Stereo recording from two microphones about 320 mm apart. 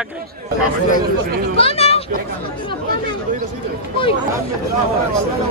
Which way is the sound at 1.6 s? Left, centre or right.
Centre.